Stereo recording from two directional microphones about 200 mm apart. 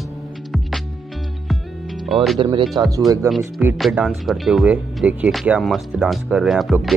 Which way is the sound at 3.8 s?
Centre (ahead or behind).